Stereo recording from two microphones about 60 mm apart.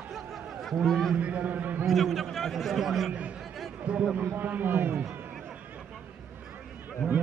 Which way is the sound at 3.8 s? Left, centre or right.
Right.